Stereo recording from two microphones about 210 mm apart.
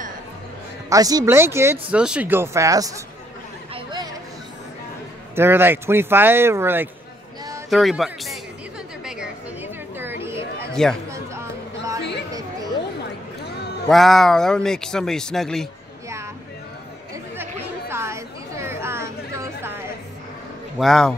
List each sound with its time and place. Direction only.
0.8 s speech: 15° right (ahead or behind)
3.7 s a sound: 20° right (ahead or behind)
5.3 s speech: 10° right (ahead or behind)
7.7 s speech: centre (ahead or behind)
9.0 s chatter: 5° right (ahead or behind)
10.7 s speech: centre (ahead or behind)
11.1 s music: 15° right (ahead or behind)
13.8 s speech: centre (ahead or behind)
17.4 s chatter: 10° right (ahead or behind)
20.7 s speech: centre (ahead or behind)